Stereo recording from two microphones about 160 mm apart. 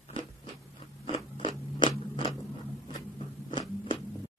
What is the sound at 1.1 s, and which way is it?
Scrape, 30° left (ahead or behind).